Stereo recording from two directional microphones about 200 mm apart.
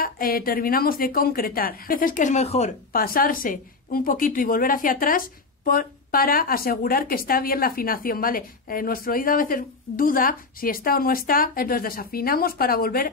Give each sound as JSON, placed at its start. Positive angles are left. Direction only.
{"t": 0.0, "sound": "a woman's voice", "side_deg": 45}
{"t": 2.9, "sound": "a woman's voice", "side_deg": 45}